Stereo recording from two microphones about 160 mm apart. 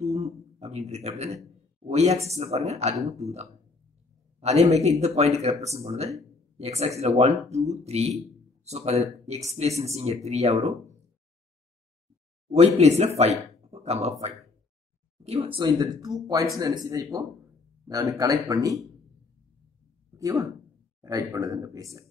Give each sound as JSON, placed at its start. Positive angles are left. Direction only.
{"t": 0.0, "sound": "a sound", "side_deg": -40}
{"t": 1.9, "sound": "speech", "side_deg": -40}
{"t": 12.4, "sound": "speech", "side_deg": -40}
{"t": 15.2, "sound": "speech", "side_deg": -35}
{"t": 20.2, "sound": "speech", "side_deg": -20}